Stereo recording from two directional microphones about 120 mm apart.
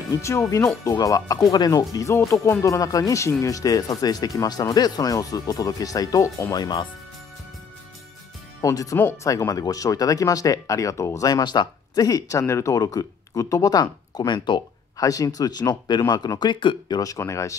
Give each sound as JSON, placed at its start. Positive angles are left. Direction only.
{"t": 0.1, "sound": "speech", "side_deg": 25}
{"t": 8.5, "sound": "speech", "side_deg": 30}
{"t": 17.0, "sound": "speech", "side_deg": 25}